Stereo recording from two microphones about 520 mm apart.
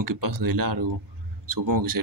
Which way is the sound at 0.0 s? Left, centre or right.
Right.